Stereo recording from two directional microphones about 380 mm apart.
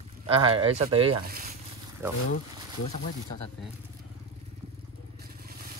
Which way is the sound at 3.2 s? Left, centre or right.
Left.